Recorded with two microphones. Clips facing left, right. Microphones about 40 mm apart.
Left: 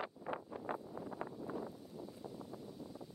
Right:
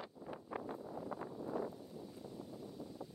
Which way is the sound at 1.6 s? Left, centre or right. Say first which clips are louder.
Right 1 dB; centre.